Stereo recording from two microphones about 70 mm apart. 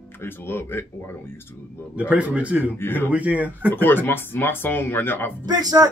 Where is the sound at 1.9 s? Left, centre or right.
Centre.